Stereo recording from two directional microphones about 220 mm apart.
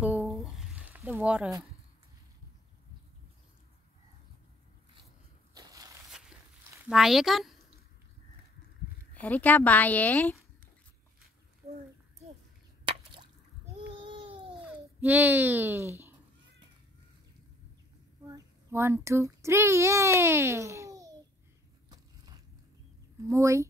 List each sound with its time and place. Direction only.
0.3 s a sound: centre (ahead or behind)
5.5 s crushing: 15° right (ahead or behind)
6.9 s speech: centre (ahead or behind)
9.1 s a woman's voice: 5° left (ahead or behind)
12.8 s a sound: 20° right (ahead or behind)
13.9 s babbling: 25° right (ahead or behind)
14.6 s a child's voice: 10° right (ahead or behind)
18.2 s a child's voice: 15° right (ahead or behind)
21.8 s biting: 20° right (ahead or behind)
23.2 s speech: 15° right (ahead or behind)